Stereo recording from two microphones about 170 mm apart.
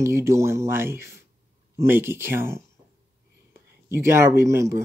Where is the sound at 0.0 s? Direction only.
15° right (ahead or behind).